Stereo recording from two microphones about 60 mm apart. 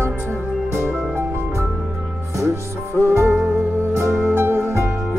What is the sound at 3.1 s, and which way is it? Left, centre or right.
Music, right.